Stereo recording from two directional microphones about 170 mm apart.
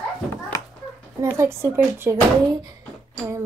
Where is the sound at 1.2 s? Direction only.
15° right (ahead or behind).